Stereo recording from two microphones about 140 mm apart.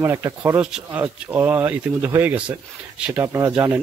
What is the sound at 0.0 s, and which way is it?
Speech, 20° right (ahead or behind).